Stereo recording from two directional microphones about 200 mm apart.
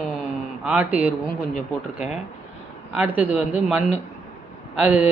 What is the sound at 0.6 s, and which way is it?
Speech, 5° right (ahead or behind).